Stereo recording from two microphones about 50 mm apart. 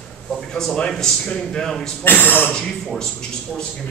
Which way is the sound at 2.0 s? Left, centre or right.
Left.